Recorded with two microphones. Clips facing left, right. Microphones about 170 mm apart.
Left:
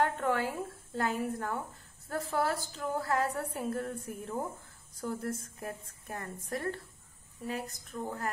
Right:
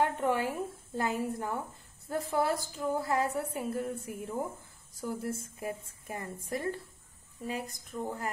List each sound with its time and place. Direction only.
0.0 s a woman's voice: 15° right (ahead or behind)